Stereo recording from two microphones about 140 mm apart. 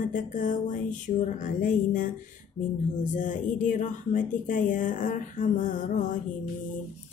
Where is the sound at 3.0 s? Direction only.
65° left (ahead or behind).